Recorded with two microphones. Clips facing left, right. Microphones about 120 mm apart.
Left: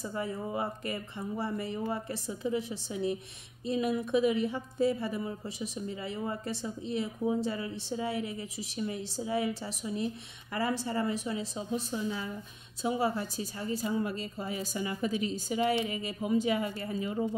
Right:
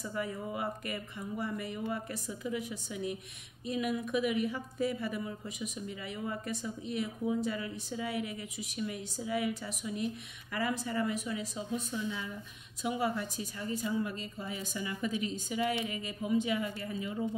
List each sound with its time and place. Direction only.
0.0 s a woman's voice: 30° left (ahead or behind)